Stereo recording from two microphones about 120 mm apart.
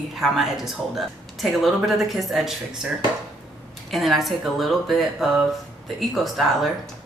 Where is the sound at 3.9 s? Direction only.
Centre (ahead or behind).